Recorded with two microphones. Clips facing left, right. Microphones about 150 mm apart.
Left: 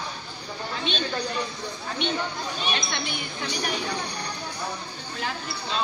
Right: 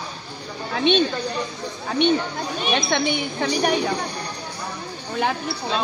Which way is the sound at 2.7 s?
70° right (ahead or behind).